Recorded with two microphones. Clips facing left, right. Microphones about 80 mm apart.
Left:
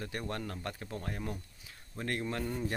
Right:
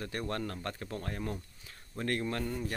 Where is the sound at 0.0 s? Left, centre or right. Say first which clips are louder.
Right 2 dB; centre.